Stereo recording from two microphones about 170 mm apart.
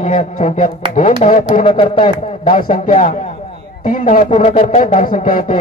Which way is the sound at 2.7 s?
50° left (ahead or behind).